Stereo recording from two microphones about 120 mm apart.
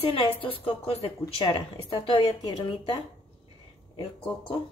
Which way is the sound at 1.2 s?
40° left (ahead or behind).